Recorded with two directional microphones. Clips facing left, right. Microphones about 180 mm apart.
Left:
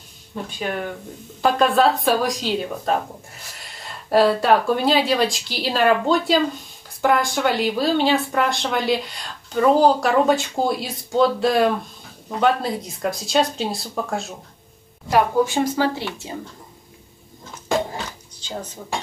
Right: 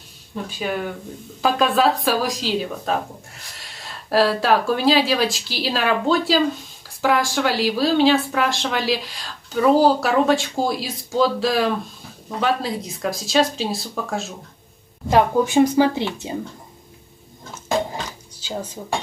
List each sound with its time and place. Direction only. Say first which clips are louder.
0.7 s speech: right 2 dB; centre (ahead or behind)
15.0 s a woman's voice: right 1 dB; 20° right (ahead or behind)